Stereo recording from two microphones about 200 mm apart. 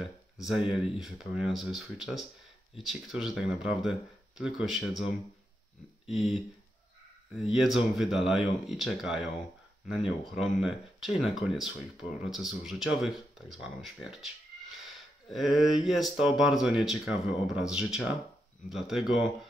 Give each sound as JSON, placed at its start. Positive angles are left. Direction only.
{"t": 0.0, "sound": "speech", "side_deg": 0}